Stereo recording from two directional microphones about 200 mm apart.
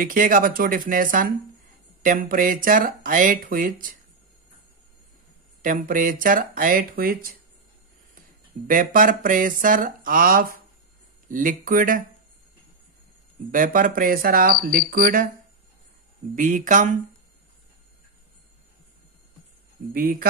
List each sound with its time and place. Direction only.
0.0 s speech: 45° right (ahead or behind)
5.6 s speech: 40° right (ahead or behind)
8.6 s speech: 45° right (ahead or behind)
13.5 s speech: 45° right (ahead or behind)
16.3 s speech: 40° right (ahead or behind)
19.9 s speech: 45° right (ahead or behind)